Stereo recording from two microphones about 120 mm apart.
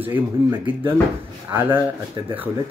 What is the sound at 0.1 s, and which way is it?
Speech, 15° right (ahead or behind).